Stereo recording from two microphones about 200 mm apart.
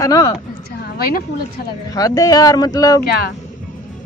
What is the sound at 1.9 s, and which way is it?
Speech, 15° left (ahead or behind).